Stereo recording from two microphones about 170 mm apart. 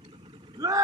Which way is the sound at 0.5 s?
20° right (ahead or behind).